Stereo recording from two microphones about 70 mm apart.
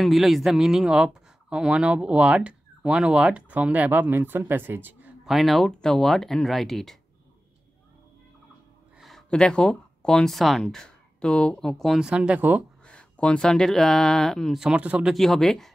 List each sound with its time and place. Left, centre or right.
0.0 s speech: centre; by 5.1 s right
5.2 s speech: centre
9.3 s speech: centre
11.6 s speech: centre
12.0 s speech: centre
12.4 s speech: right
12.8 s speech: centre
14.8 s speech: right
15.1 s speech: centre